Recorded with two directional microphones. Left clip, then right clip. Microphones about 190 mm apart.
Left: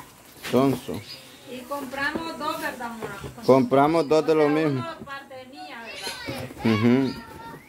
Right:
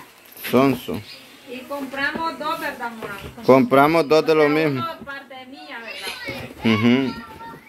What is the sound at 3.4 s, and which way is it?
A man's voice, 5° right (ahead or behind).